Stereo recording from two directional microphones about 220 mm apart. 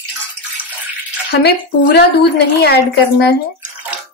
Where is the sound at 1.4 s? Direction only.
50° left (ahead or behind).